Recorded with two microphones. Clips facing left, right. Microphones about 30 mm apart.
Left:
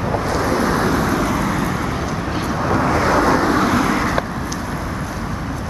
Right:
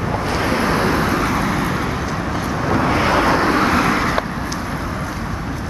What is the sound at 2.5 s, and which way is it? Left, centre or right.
Vehicle, centre.